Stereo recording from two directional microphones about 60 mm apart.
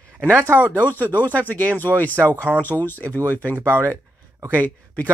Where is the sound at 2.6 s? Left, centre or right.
Left.